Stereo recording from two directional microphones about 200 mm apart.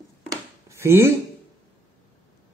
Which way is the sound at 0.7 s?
10° right (ahead or behind).